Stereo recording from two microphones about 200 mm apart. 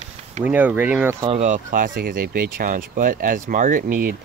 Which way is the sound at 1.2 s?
35° right (ahead or behind).